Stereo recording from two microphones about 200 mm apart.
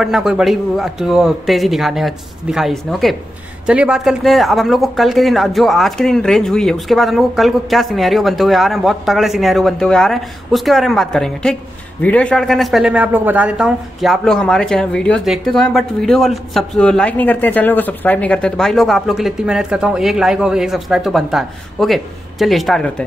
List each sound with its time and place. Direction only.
0.0 s a man's voice: centre (ahead or behind)